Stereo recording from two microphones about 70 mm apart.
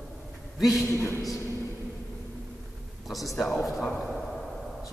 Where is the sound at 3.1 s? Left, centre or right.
Centre.